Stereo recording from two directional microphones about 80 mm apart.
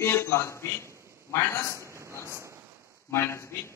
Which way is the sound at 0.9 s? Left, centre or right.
Right.